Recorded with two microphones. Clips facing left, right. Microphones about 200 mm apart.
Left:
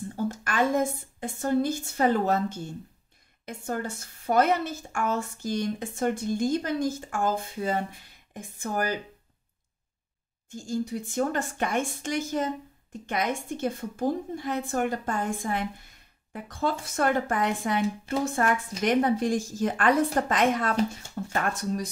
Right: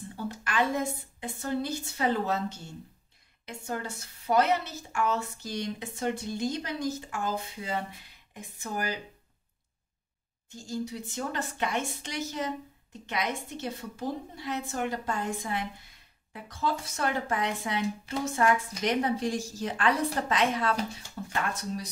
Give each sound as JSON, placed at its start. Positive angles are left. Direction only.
{"t": 0.1, "sound": "a woman's voice", "side_deg": 45}
{"t": 10.5, "sound": "a woman's voice", "side_deg": 50}